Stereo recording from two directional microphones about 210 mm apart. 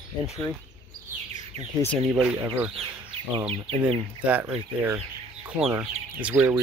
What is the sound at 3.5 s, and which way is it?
Speech, 25° right (ahead or behind).